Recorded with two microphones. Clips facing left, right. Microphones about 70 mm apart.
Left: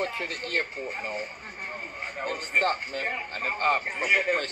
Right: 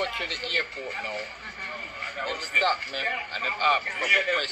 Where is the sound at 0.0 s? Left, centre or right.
Centre.